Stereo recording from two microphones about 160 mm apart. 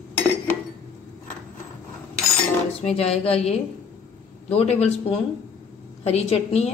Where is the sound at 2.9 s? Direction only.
40° left (ahead or behind).